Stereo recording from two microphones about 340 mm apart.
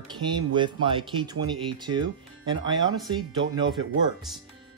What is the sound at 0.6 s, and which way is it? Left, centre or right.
Speech, centre.